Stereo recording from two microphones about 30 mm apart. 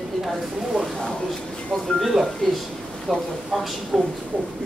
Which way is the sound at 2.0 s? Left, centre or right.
Centre.